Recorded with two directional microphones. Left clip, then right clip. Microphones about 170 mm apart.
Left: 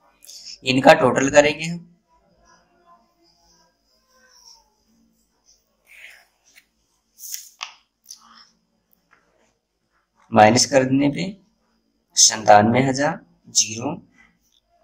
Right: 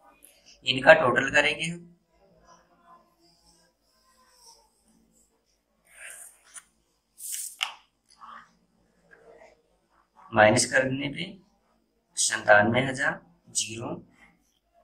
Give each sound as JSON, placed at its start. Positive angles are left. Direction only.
{"t": 0.6, "sound": "speech", "side_deg": 25}
{"t": 10.3, "sound": "speech", "side_deg": 25}